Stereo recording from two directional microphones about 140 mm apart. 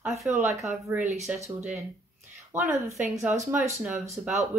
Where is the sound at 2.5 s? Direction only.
20° right (ahead or behind).